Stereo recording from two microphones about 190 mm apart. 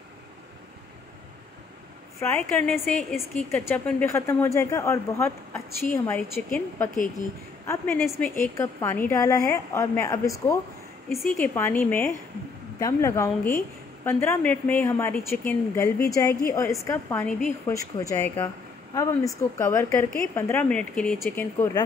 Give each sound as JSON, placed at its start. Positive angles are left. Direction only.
{"t": 2.1, "sound": "a woman's voice", "side_deg": 10}
{"t": 11.1, "sound": "a woman's voice", "side_deg": 0}